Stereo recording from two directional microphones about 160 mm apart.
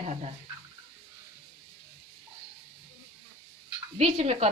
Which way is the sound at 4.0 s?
40° right (ahead or behind).